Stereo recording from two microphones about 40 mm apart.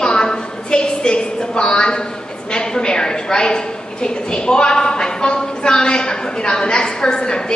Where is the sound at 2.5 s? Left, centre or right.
Left.